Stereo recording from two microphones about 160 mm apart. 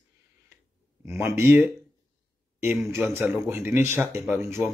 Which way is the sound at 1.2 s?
15° right (ahead or behind).